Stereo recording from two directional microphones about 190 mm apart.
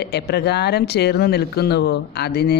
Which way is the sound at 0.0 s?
60° left (ahead or behind).